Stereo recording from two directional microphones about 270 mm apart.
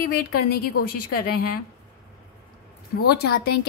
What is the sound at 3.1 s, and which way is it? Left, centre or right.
Speech, left.